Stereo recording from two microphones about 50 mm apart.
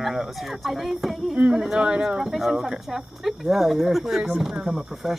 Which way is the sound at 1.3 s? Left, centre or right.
Centre.